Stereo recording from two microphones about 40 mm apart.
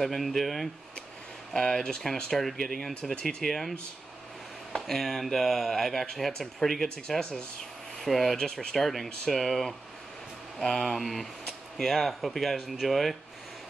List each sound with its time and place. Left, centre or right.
0.0 s speech: centre
1.5 s speech: centre
2.3 s speech: centre
3.2 s speech: centre
3.4 s speech: centre
4.7 s speech: centre
8.0 s speech: centre
8.4 s speech: centre
8.7 s speech: centre